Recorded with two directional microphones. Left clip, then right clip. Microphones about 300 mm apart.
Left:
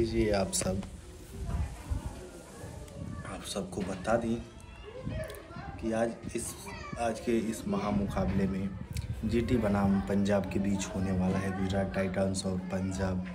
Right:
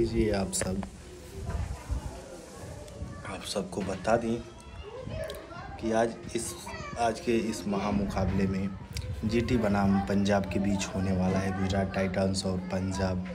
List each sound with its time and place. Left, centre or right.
0.0 s a man's voice: centre
3.3 s a man's voice: centre
5.3 s a sound: centre
7.0 s a man's voice: centre